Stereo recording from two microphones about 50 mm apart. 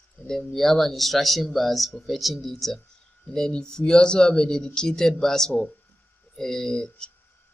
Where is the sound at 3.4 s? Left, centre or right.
Centre.